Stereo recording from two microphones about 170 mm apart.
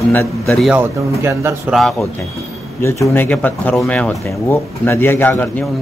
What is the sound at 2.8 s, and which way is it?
Speech, 15° left (ahead or behind).